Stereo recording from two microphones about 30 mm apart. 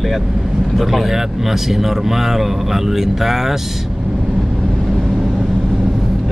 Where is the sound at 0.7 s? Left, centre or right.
Centre.